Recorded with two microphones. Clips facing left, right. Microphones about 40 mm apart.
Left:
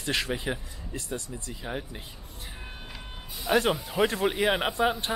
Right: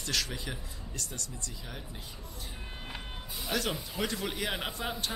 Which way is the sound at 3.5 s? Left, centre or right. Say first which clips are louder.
Left 9 dB; left.